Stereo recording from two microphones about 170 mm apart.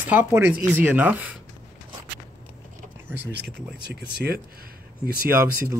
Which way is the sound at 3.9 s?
70° right (ahead or behind).